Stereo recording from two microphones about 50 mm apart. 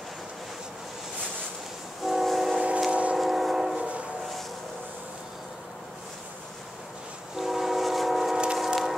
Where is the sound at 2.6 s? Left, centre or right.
Centre.